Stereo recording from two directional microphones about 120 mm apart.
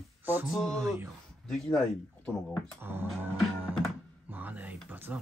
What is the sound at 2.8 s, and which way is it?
Speech, 20° right (ahead or behind).